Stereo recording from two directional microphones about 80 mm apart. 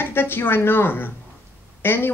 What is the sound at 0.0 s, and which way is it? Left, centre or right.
Speech, left.